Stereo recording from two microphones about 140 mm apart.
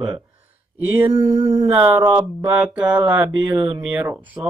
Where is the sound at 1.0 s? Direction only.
25° right (ahead or behind).